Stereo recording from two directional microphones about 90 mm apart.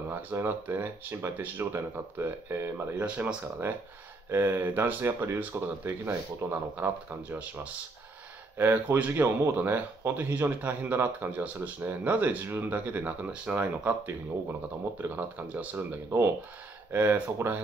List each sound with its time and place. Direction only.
0.1 s speech: 25° right (ahead or behind)
3.0 s speech: 15° right (ahead or behind)
4.3 s speech: 25° right (ahead or behind)
15.5 s speech: 15° right (ahead or behind)